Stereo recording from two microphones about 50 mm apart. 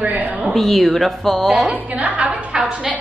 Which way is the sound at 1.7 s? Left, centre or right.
Right.